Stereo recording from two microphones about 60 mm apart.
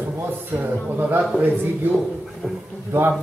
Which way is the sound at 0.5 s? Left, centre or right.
Right.